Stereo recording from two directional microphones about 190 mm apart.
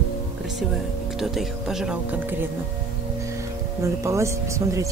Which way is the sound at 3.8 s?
15° right (ahead or behind).